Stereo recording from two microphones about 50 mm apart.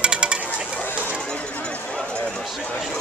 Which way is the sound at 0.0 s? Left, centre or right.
Right.